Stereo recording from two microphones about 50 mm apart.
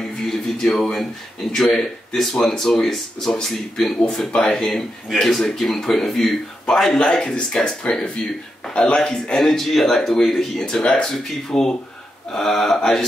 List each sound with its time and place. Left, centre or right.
0.3 s speech: centre
9.4 s speech: centre